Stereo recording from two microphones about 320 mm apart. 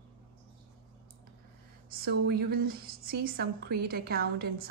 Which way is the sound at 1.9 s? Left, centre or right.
Right.